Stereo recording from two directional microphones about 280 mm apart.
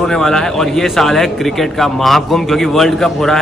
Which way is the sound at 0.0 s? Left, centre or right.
Centre.